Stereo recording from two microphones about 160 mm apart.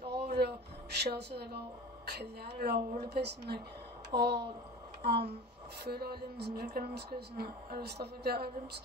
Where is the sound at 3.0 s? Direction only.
90° right.